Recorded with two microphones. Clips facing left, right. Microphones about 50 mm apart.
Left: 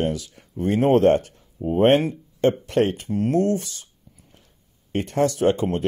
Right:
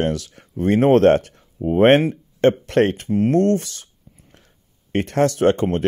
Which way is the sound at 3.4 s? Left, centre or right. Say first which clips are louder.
Right 4 dB; right.